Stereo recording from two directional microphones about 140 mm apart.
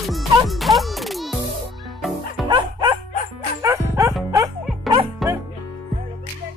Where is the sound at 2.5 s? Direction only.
30° right (ahead or behind).